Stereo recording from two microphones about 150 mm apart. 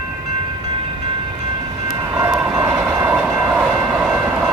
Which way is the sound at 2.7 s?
10° right (ahead or behind).